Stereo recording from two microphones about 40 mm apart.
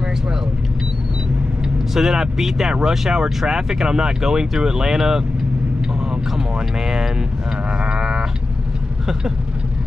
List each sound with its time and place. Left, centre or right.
2.0 s speech: centre
7.8 s sheep: right